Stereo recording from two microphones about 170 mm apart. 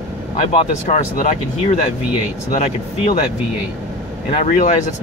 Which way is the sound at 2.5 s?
40° left (ahead or behind).